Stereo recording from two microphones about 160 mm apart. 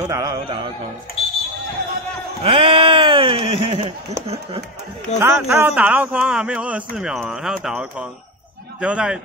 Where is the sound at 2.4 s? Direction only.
35° right (ahead or behind).